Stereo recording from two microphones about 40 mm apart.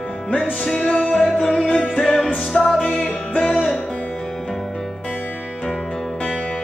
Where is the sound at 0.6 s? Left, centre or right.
Centre.